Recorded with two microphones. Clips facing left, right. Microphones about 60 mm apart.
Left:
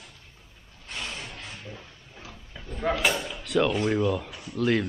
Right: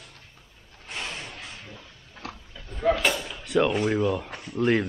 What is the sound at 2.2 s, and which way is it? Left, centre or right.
Oink, right.